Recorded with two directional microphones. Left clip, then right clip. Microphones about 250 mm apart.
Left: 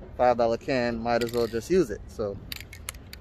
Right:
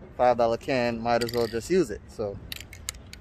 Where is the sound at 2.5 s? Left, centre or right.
Left.